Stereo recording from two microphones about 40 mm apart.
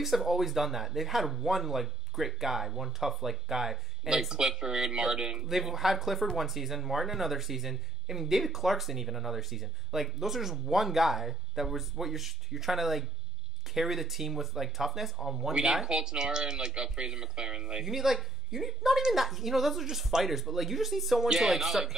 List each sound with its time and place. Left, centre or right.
0.0 s speech: centre
5.5 s speech: centre
15.5 s speech: right; by 21.9 s centre